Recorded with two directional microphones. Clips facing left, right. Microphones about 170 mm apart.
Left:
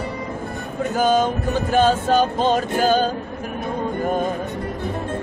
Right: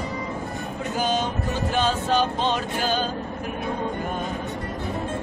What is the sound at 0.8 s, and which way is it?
Speech, 50° left (ahead or behind).